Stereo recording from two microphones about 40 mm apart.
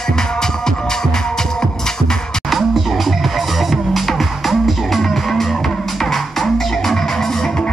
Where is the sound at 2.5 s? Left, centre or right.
Centre.